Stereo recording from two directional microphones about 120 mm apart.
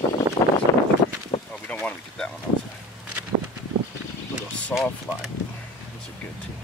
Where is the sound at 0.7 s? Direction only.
25° left (ahead or behind).